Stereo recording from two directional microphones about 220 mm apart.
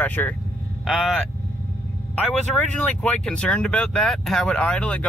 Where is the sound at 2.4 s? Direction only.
5° left (ahead or behind).